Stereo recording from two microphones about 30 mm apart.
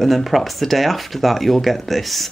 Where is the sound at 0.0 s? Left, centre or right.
Centre.